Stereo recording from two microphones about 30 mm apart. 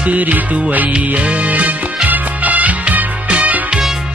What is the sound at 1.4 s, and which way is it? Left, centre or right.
Music, right.